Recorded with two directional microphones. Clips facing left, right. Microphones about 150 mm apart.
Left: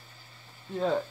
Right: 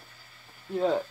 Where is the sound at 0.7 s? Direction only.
5° right (ahead or behind).